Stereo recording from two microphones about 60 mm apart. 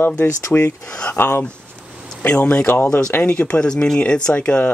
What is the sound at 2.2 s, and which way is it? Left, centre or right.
Speech, centre.